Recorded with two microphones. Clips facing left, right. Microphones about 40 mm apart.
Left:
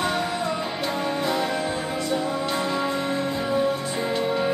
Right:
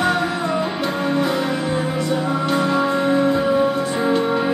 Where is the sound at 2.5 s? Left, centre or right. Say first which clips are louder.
Right 7 dB; centre.